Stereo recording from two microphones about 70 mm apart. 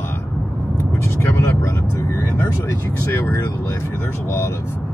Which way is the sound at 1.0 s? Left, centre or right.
Left.